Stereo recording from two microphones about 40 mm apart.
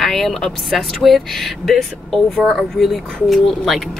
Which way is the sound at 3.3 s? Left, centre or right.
Centre.